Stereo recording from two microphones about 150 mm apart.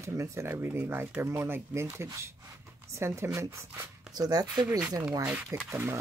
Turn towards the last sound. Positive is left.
turn(degrees=-15)  # may be behind; listen again after turning